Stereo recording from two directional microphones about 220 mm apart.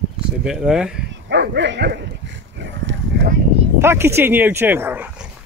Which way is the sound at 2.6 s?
55° right (ahead or behind).